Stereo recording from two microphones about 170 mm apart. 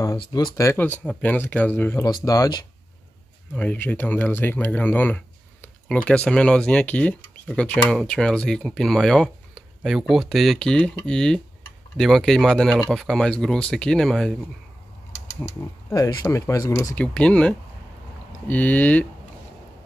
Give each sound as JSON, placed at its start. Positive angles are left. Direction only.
{"t": 0.6, "sound": "speech", "side_deg": 15}
{"t": 3.5, "sound": "speech", "side_deg": 10}
{"t": 15.9, "sound": "speech", "side_deg": 20}
{"t": 16.9, "sound": "speech", "side_deg": 5}